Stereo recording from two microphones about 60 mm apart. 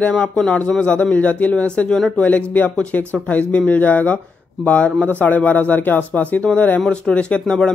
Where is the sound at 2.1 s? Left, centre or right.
Left.